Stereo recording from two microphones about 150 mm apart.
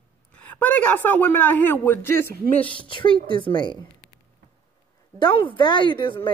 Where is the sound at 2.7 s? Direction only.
35° left (ahead or behind).